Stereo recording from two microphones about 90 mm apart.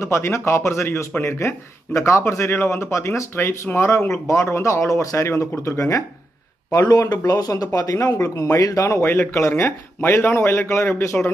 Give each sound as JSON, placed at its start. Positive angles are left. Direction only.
{"t": 0.0, "sound": "speech", "side_deg": 30}